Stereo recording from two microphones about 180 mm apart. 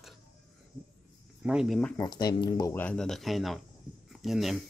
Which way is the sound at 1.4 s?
5° right (ahead or behind).